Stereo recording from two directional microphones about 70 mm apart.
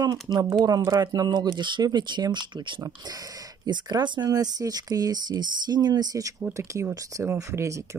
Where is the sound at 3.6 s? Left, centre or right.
Right.